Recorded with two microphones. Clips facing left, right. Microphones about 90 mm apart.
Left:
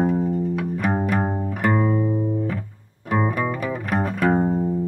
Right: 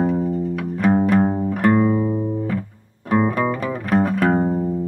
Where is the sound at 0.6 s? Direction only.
15° left (ahead or behind).